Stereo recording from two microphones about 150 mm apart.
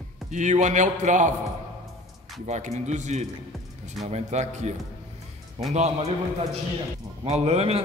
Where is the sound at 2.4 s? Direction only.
50° right (ahead or behind).